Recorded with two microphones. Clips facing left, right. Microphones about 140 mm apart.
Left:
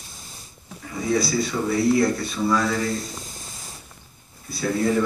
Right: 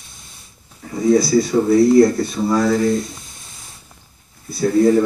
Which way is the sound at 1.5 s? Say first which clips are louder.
Right 9 dB; 40° right (ahead or behind).